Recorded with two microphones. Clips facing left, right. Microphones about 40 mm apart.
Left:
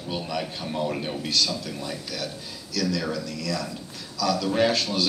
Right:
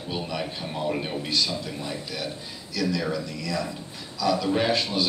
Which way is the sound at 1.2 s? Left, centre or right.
Right.